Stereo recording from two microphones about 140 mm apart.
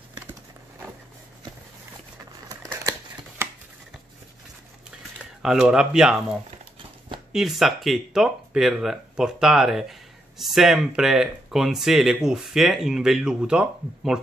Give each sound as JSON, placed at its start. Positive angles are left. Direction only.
{"t": 2.4, "sound": "a sound", "side_deg": -25}
{"t": 5.4, "sound": "speech", "side_deg": -5}
{"t": 7.3, "sound": "speech", "side_deg": 0}